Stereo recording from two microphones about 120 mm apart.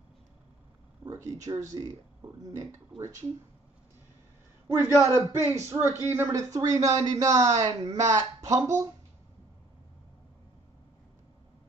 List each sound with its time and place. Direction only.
1.0 s speech: 30° right (ahead or behind)
4.6 s speech: 20° right (ahead or behind)